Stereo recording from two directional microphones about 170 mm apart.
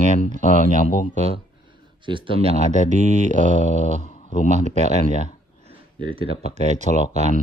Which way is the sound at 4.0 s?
45° left (ahead or behind).